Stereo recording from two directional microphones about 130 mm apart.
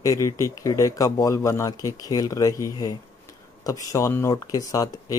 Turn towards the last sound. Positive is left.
turn(degrees=25)  # may be behind; listen again after turning